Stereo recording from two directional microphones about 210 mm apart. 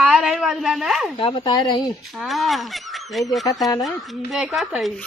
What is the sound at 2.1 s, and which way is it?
Speech, centre (ahead or behind).